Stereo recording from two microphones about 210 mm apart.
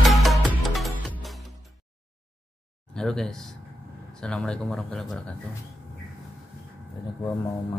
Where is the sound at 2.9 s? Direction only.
5° left (ahead or behind).